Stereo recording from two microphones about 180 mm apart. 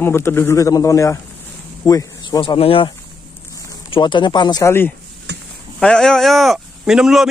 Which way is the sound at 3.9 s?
25° left (ahead or behind).